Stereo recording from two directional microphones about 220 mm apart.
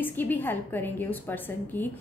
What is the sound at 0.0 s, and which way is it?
A woman's voice, 10° left (ahead or behind).